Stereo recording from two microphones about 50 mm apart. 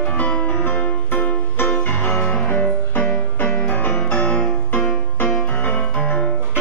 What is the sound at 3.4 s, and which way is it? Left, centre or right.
Music, left.